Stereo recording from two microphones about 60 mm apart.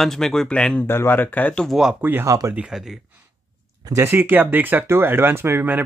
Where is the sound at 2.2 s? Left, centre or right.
Right.